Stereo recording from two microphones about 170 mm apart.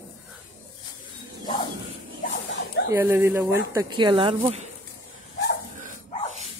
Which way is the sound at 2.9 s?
15° right (ahead or behind).